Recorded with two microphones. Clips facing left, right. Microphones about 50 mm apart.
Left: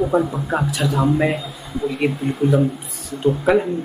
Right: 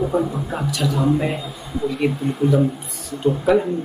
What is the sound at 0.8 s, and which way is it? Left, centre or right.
Speech, centre.